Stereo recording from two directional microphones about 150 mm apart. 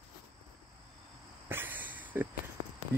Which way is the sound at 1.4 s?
15° right (ahead or behind).